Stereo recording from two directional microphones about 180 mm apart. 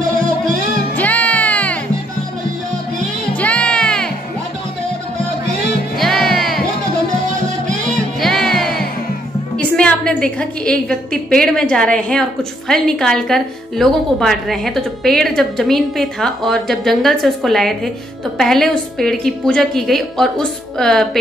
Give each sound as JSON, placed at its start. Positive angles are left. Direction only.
{"t": 0.9, "sound": "music", "side_deg": 10}
{"t": 3.3, "sound": "music", "side_deg": 5}
{"t": 5.9, "sound": "music", "side_deg": 0}
{"t": 7.2, "sound": "music", "side_deg": -45}
{"t": 8.2, "sound": "music", "side_deg": 0}
{"t": 9.6, "sound": "a woman's voice", "side_deg": 5}